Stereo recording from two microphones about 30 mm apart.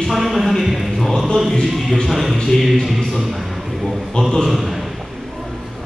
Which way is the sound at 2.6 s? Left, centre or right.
Centre.